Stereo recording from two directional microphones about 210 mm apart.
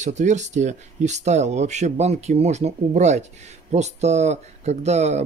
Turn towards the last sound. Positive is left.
turn(degrees=-30)  # may be behind; listen again after turning